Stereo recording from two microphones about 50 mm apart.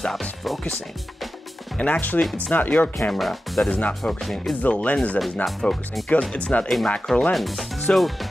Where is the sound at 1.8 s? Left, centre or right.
Left.